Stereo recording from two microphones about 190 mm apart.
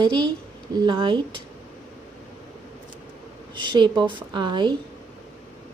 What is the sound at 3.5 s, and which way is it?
Speech, 25° right (ahead or behind).